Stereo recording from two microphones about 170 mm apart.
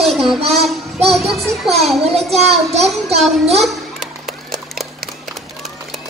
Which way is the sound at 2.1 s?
Centre (ahead or behind).